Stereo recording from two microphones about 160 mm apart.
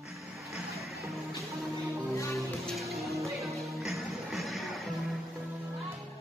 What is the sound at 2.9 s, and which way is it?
Music, 20° right (ahead or behind).